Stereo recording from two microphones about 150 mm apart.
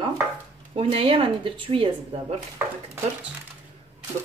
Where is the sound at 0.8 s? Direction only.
40° right (ahead or behind).